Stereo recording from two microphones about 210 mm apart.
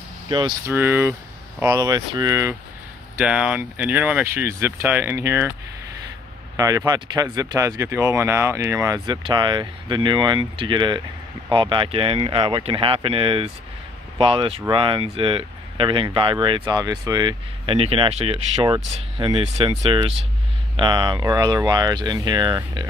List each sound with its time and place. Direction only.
0.3 s speech: 20° right (ahead or behind)
0.7 s speech: 10° right (ahead or behind)
6.5 s speech: 15° right (ahead or behind)